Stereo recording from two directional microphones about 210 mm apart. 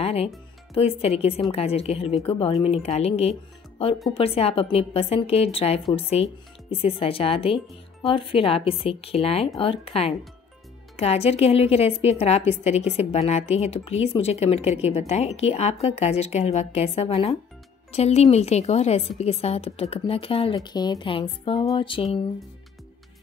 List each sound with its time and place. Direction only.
0.0 s a woman's voice: 30° left (ahead or behind)